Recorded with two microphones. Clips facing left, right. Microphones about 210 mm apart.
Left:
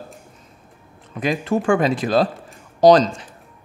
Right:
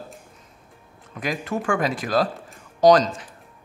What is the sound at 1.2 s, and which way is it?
Speech, 25° left (ahead or behind).